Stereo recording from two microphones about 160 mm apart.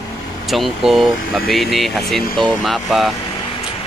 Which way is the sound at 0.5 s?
Centre (ahead or behind).